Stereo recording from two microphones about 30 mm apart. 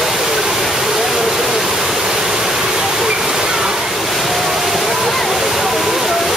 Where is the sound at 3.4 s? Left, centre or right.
Centre.